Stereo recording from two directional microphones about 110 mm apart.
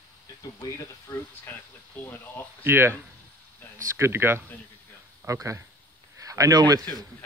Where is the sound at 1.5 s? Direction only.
20° left (ahead or behind).